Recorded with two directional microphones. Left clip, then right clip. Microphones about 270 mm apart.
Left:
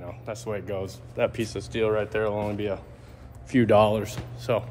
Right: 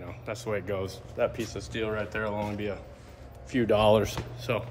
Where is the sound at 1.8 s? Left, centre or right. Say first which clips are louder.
Left 7 dB; centre.